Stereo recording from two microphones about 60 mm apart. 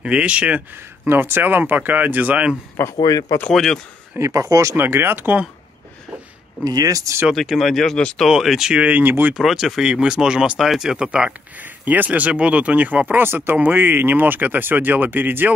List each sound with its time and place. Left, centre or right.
0.0 s speech: centre
1.0 s speech: right
3.1 s speech: left
3.5 s speech: centre
4.2 s speech: right
4.7 s speech: right
6.6 s speech: right
7.4 s speech: centre
8.3 s speech: centre
8.8 s speech: right
9.3 s speech: centre
11.6 s speech: right